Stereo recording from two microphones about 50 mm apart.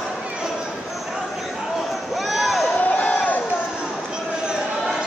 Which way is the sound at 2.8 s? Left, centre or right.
Left.